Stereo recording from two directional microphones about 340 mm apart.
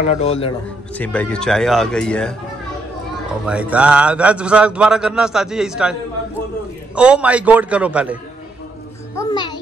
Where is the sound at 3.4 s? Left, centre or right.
Centre.